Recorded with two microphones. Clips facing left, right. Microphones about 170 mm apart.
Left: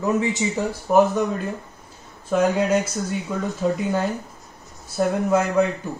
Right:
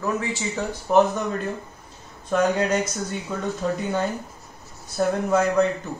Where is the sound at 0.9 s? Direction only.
5° left (ahead or behind).